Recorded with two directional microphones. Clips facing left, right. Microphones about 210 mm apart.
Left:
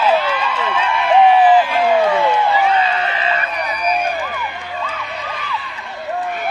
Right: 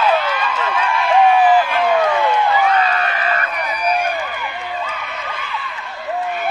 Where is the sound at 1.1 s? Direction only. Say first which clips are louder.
Left 2 dB; 20° left (ahead or behind).